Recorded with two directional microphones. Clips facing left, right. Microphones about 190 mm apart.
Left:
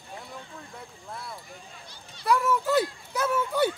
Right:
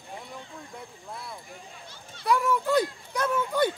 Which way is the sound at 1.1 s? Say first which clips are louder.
Left 1 dB; centre (ahead or behind).